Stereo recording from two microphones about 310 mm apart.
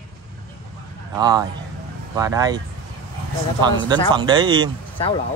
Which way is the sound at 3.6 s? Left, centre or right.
Centre.